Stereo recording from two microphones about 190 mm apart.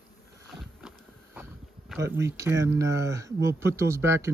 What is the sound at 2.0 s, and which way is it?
Speech, 15° right (ahead or behind).